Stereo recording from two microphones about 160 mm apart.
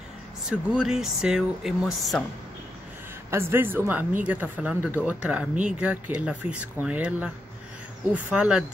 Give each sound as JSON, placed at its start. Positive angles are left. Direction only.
{"t": 0.5, "sound": "speech", "side_deg": -5}
{"t": 3.3, "sound": "speech", "side_deg": -15}
{"t": 8.3, "sound": "speech", "side_deg": -5}